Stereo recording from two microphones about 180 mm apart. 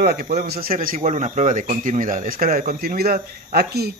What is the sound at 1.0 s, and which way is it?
Speech, 40° right (ahead or behind).